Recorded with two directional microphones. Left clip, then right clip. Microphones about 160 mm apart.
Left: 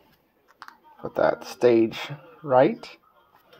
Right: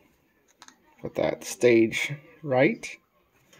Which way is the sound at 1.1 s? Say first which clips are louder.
Left 4 dB; 25° right (ahead or behind).